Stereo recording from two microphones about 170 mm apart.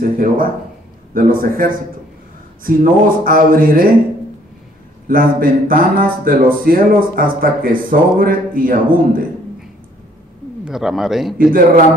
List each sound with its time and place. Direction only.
0.0 s speech: 55° right (ahead or behind)
5.0 s speech: 55° right (ahead or behind)
10.6 s speech: centre (ahead or behind)